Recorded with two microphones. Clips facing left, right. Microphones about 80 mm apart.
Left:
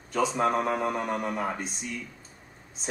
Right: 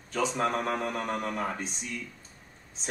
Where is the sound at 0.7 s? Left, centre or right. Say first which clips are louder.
Left 3 dB; centre.